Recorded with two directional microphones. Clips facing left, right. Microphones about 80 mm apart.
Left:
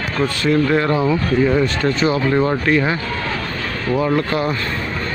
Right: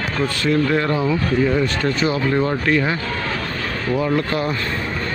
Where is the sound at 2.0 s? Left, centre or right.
Left.